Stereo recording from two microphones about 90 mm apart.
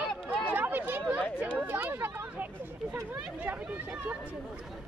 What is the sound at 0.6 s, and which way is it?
Chatter, 20° right (ahead or behind).